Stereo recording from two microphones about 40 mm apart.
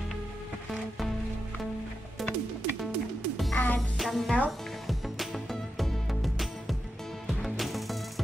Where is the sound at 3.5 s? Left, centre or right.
Left.